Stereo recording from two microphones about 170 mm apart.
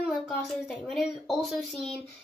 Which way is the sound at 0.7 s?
Centre (ahead or behind).